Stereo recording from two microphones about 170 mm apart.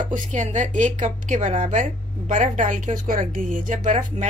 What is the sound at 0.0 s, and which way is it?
A woman's voice, 50° right (ahead or behind).